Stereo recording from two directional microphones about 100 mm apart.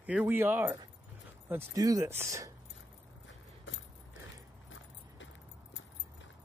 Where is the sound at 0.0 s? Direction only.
15° right (ahead or behind).